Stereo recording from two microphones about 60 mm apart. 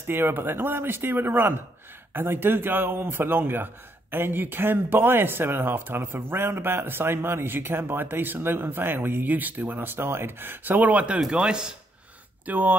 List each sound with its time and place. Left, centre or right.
0.0 s a man's voice: right
11.1 s chopping: centre
12.4 s speech: right